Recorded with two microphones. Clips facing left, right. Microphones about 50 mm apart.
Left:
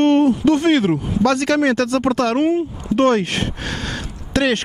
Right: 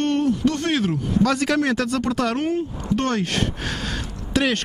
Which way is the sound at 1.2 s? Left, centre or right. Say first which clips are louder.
Left 6 dB; centre.